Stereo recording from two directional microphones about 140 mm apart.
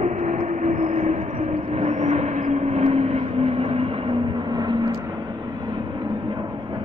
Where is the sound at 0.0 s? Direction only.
55° right (ahead or behind); by 4.9 s 35° right (ahead or behind).